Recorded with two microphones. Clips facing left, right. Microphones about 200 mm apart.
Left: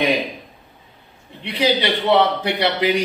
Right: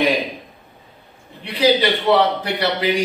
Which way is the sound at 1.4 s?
25° left (ahead or behind).